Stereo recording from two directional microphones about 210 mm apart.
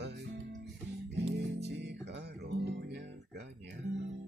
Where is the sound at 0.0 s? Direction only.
50° right (ahead or behind).